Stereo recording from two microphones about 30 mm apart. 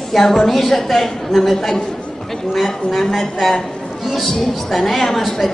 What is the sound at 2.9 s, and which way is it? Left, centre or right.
Speech, centre.